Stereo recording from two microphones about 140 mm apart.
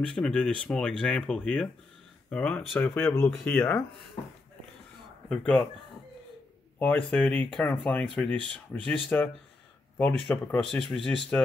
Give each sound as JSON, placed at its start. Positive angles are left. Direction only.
{"t": 0.0, "sound": "speech", "side_deg": 5}
{"t": 5.3, "sound": "speech", "side_deg": 5}
{"t": 6.8, "sound": "speech", "side_deg": 10}